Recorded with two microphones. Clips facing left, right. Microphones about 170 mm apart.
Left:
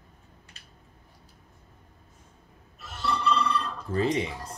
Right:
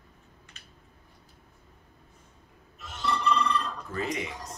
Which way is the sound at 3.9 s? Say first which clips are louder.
Left 7 dB; 30° left (ahead or behind).